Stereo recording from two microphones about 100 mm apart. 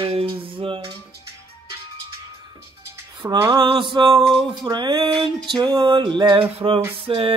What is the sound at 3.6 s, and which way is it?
Speech, 55° right (ahead or behind).